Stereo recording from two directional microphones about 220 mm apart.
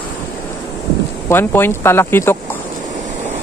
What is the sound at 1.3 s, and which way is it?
Speech, 10° left (ahead or behind).